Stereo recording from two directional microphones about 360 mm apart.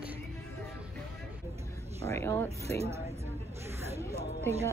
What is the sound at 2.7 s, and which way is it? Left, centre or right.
Speech, centre.